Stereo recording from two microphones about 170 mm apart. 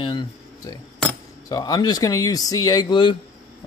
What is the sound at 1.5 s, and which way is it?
Speech, 25° left (ahead or behind).